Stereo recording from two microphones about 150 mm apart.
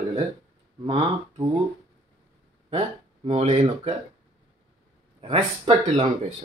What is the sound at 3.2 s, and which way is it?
Speech, 45° right (ahead or behind).